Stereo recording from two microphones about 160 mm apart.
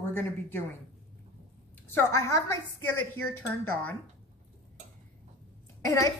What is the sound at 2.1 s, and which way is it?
Speech, 20° left (ahead or behind).